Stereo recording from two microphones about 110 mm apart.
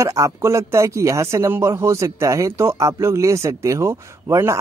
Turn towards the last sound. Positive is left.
turn(degrees=-25)  # may be behind; listen again after turning